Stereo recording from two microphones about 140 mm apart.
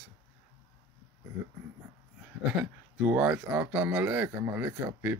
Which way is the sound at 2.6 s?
10° right (ahead or behind).